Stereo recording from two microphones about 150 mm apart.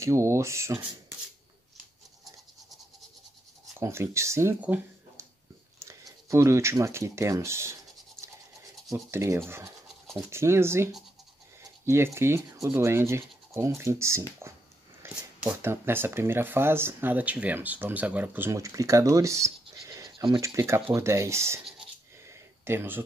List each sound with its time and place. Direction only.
0.0 s speech: 20° right (ahead or behind)
3.8 s speech: 20° right (ahead or behind)
8.2 s scratch: 5° left (ahead or behind)
8.9 s speech: 20° right (ahead or behind)
22.3 s a sound: 15° right (ahead or behind)